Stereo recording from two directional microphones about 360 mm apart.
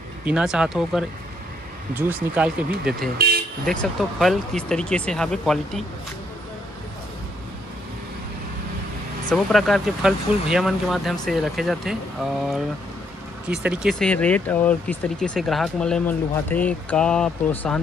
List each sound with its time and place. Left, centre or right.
0.2 s speech: centre
3.2 s vehicle: right
4.2 s speech: centre
9.3 s speech: centre
13.7 s speech: centre